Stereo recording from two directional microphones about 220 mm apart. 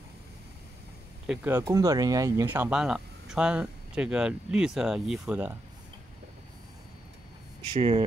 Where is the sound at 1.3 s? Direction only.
10° right (ahead or behind).